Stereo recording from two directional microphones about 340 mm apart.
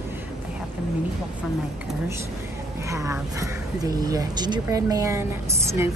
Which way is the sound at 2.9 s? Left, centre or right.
Centre.